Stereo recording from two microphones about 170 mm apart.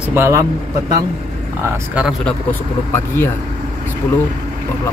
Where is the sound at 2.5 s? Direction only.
10° left (ahead or behind).